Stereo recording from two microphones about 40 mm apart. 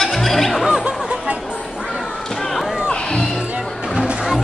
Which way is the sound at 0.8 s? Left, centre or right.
Right.